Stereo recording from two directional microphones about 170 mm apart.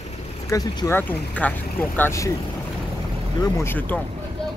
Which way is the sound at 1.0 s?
10° left (ahead or behind).